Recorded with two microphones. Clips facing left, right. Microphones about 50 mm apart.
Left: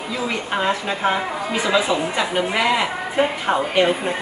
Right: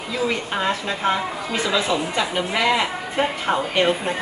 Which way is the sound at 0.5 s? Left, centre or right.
Centre.